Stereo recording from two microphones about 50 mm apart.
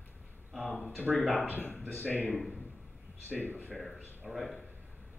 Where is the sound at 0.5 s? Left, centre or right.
Centre.